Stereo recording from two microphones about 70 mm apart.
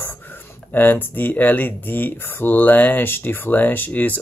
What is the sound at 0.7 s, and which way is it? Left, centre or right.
Speech, left.